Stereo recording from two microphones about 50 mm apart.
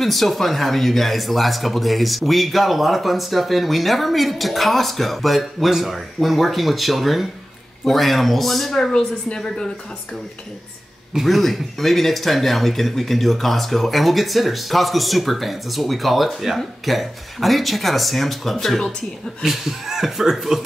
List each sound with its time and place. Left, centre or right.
0.0 s speech: centre
8.9 s a woman's voice: centre
11.1 s speech: centre
19.4 s speech: centre